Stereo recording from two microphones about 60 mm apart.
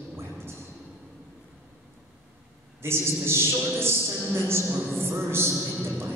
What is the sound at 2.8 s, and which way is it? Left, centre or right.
A man's voice, right.